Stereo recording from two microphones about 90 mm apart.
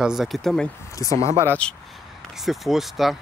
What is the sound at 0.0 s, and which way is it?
Speech, 5° right (ahead or behind).